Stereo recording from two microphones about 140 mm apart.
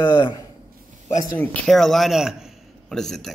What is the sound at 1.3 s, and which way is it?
Speech, 15° left (ahead or behind).